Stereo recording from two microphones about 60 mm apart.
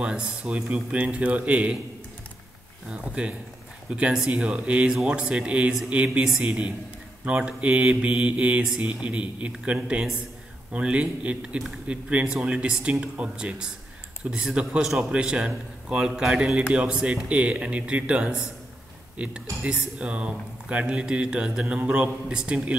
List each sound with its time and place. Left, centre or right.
0.0 s speech: centre
2.9 s a man's voice: centre